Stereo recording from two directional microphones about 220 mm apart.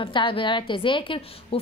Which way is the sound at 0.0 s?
20° left (ahead or behind).